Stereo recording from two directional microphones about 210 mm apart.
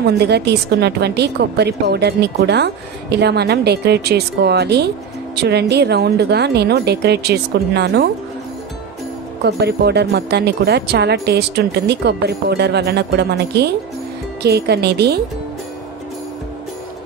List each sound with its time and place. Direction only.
0.0 s a woman's voice: 50° right (ahead or behind)
9.4 s a woman's voice: 50° right (ahead or behind)